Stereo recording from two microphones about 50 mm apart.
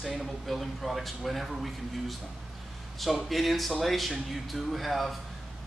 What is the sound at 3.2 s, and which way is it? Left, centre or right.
A man's voice, centre.